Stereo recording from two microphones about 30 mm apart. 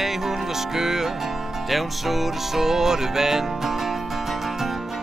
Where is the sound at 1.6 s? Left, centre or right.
Centre.